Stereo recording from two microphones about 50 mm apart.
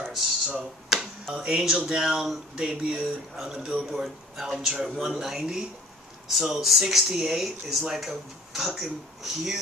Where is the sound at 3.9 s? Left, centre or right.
Centre.